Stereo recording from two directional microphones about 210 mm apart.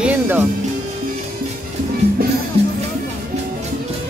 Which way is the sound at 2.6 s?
30° right (ahead or behind).